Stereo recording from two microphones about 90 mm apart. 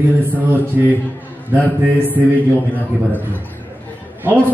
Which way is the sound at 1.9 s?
20° right (ahead or behind).